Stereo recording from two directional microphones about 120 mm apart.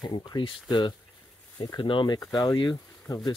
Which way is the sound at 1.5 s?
40° left (ahead or behind).